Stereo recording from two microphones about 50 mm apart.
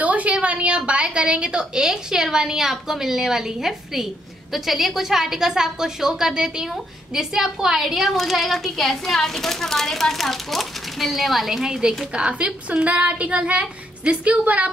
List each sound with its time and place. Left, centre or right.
0.0 s a woman's voice: right; by 11.9 s centre
12.1 s speech: right